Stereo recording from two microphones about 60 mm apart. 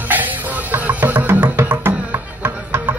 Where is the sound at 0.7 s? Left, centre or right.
Right.